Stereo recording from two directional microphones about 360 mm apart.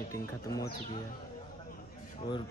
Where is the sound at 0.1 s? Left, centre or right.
Centre.